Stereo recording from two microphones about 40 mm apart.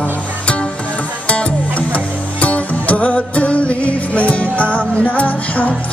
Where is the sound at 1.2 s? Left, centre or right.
Left.